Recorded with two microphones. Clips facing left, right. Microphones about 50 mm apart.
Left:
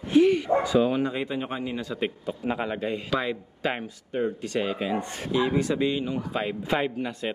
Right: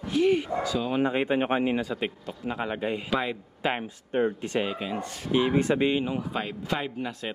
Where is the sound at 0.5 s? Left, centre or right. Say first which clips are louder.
Left 6 dB; left.